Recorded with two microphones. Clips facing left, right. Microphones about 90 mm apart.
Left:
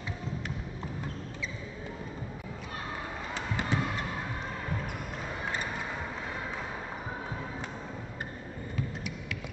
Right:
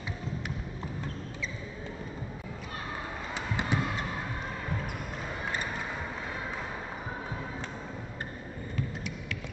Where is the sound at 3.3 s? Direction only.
15° right (ahead or behind).